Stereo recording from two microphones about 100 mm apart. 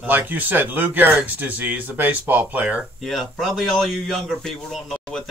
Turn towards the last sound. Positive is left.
turn(degrees=5)  # may be behind; listen again after turning